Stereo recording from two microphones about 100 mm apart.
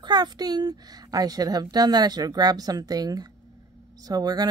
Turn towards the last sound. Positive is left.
turn(degrees=-40)  # may be behind; listen again after turning